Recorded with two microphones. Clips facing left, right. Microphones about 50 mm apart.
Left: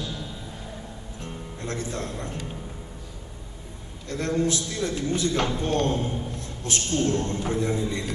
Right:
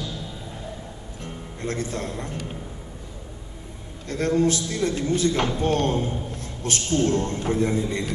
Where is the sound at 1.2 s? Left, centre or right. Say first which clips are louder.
Right 3 dB; right.